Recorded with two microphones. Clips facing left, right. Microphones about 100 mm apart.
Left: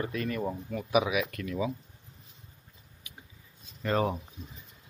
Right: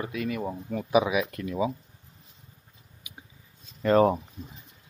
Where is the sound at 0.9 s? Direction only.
30° right (ahead or behind).